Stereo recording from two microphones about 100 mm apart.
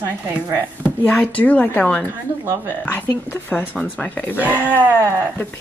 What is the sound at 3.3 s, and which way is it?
Speech, 15° left (ahead or behind).